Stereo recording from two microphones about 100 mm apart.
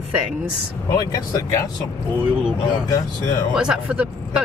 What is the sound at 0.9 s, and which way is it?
Speech, 40° left (ahead or behind).